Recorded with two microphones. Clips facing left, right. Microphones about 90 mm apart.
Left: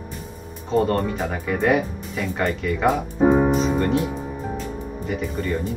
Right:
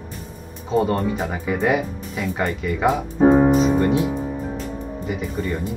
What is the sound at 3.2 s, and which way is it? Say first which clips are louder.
Piano: right 3 dB; 5° right (ahead or behind).